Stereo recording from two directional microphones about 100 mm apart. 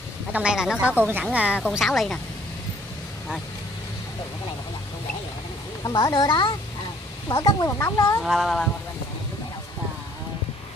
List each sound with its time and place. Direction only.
0.3 s a woman's voice: 10° right (ahead or behind)
1.7 s speech: centre (ahead or behind)
5.9 s speech: 40° left (ahead or behind)
7.2 s speech: 35° left (ahead or behind)
8.2 s speech: centre (ahead or behind)